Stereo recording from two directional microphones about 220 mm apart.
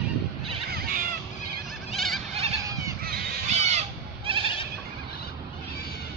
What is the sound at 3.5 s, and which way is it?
Goat, 30° right (ahead or behind).